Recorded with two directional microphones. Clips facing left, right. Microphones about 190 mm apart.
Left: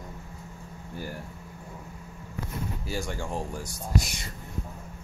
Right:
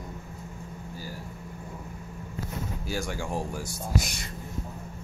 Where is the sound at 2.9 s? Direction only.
5° right (ahead or behind).